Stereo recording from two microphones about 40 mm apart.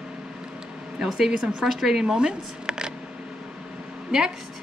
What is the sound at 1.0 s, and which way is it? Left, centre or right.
A woman's voice, centre.